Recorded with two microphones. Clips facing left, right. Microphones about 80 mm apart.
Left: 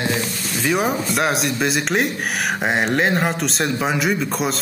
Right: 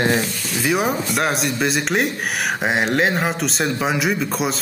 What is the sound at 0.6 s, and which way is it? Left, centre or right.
Speech, centre.